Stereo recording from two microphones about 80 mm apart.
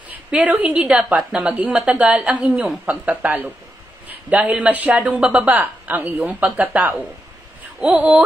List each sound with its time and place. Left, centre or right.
0.3 s a woman's voice: centre
7.9 s speech: centre